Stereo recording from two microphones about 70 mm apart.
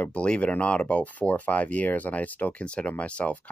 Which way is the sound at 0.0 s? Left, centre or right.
Centre.